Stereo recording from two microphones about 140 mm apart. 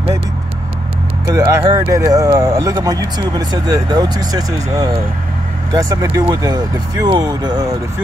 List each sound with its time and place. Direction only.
1.2 s speech: 25° right (ahead or behind)